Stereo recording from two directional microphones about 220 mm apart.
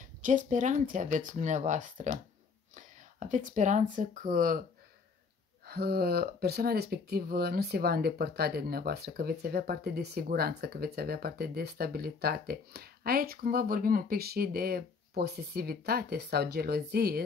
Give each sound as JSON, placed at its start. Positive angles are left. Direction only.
{"t": 0.0, "sound": "speech", "side_deg": -35}
{"t": 5.7, "sound": "speech", "side_deg": -45}